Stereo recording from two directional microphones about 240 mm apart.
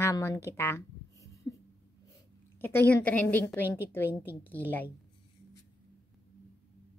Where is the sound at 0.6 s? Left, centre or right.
Centre.